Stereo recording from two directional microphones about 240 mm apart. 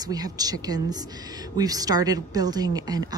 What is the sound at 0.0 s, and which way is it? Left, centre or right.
Speech, centre.